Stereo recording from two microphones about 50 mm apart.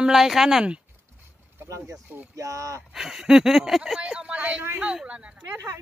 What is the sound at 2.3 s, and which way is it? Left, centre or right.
Speech, right.